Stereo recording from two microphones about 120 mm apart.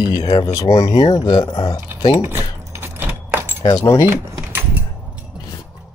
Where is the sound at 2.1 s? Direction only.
20° right (ahead or behind).